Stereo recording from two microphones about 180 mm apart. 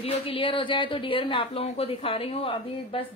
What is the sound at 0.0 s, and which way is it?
Speech, 30° left (ahead or behind).